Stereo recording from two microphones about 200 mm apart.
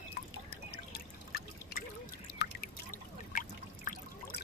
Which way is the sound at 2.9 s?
45° left (ahead or behind).